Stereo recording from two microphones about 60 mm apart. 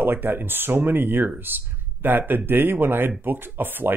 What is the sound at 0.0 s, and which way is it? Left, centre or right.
Speech, right.